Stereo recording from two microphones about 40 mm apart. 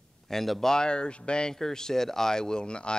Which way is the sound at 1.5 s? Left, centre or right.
Centre.